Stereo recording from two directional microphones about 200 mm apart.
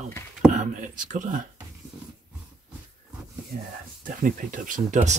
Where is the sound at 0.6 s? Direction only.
40° right (ahead or behind).